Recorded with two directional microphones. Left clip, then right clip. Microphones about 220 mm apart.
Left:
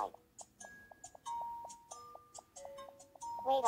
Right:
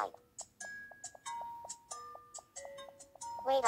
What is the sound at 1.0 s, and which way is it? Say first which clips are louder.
Music: left 3 dB; 25° right (ahead or behind).